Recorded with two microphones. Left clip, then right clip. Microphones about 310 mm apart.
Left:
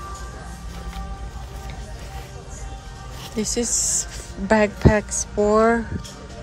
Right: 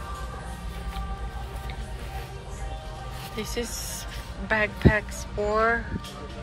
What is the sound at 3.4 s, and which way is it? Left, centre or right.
Speech, centre.